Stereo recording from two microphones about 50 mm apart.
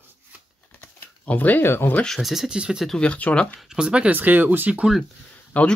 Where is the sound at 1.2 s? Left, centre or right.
Left.